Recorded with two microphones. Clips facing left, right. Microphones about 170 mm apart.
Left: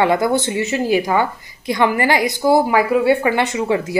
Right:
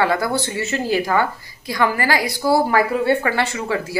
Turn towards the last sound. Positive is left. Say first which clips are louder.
# left 4 dB
turn(degrees=20)  # may be behind; listen again after turning